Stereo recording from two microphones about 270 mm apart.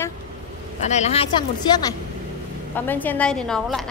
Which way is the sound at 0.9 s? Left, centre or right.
Left.